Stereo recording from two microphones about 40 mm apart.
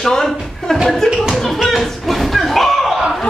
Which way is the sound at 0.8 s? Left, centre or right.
Centre.